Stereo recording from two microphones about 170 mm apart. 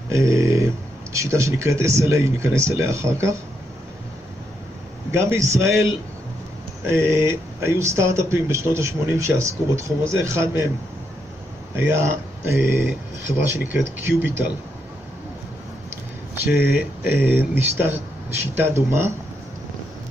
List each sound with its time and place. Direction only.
0.1 s a sound: 15° right (ahead or behind)
1.1 s speech: 15° right (ahead or behind)
5.1 s speech: 15° right (ahead or behind)
6.9 s speech: 15° right (ahead or behind)
11.7 s speech: 15° right (ahead or behind)
16.5 s speech: 10° right (ahead or behind)